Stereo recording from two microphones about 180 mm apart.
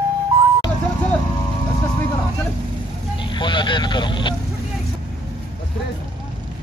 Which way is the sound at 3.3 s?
25° left (ahead or behind).